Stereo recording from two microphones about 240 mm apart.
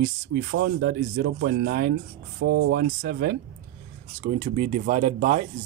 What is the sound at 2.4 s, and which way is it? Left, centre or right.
Speech, right.